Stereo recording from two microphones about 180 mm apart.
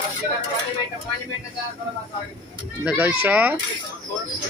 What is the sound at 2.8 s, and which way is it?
Speech, 10° right (ahead or behind).